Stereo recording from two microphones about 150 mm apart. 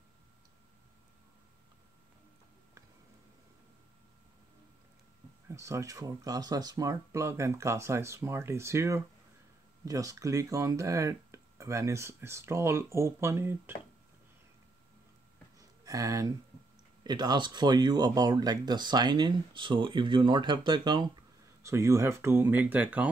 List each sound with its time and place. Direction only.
5.5 s speech: 20° right (ahead or behind)
15.8 s speech: 20° right (ahead or behind)
21.6 s speech: 20° right (ahead or behind)